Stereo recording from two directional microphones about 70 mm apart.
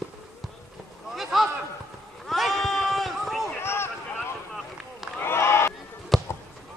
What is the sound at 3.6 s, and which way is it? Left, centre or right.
Boat, left.